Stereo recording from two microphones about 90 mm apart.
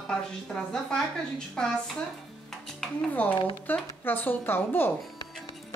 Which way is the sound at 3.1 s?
15° left (ahead or behind).